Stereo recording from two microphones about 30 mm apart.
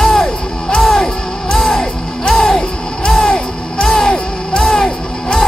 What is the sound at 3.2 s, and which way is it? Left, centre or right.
Music, left.